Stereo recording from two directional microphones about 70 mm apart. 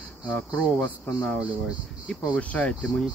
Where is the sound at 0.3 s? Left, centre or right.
Centre.